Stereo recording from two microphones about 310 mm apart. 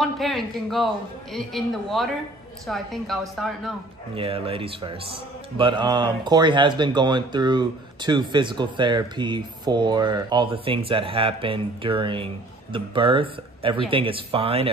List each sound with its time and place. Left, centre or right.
0.0 s a woman's voice: centre
4.1 s speech: centre